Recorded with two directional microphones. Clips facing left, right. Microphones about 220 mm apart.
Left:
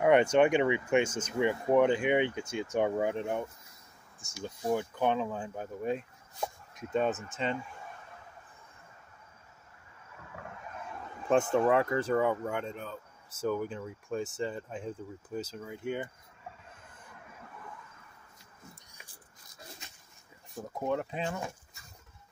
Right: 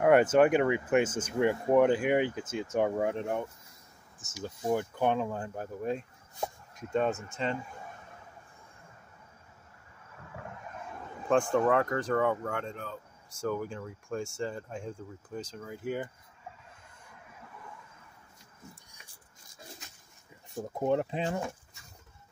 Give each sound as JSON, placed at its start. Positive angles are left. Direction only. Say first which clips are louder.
{"t": 0.0, "sound": "speech", "louder": "right 1 dB", "side_deg": -5}
{"t": 11.5, "sound": "speech", "louder": "even", "side_deg": 10}
{"t": 20.8, "sound": "speech", "louder": "right 4 dB", "side_deg": -30}